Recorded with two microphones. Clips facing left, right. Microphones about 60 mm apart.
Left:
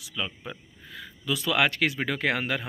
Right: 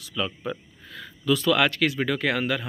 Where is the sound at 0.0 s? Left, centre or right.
Centre.